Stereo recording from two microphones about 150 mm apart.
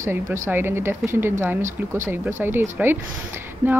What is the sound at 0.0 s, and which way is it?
Speech, 15° right (ahead or behind).